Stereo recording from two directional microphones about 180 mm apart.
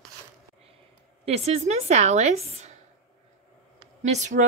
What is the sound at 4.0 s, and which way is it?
Speech, 40° right (ahead or behind).